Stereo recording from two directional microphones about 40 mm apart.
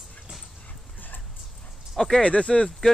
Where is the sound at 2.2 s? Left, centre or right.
Left.